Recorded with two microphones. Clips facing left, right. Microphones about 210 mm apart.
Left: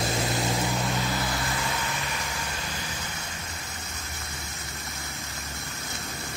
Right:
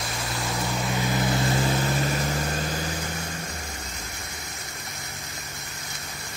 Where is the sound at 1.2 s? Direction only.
25° right (ahead or behind).